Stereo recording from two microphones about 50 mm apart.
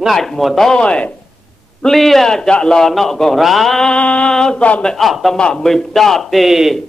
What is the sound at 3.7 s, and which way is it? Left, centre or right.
Speech, left.